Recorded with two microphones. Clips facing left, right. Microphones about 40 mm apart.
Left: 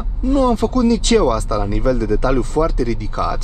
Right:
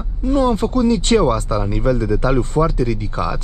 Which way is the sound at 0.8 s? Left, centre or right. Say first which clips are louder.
Even; right.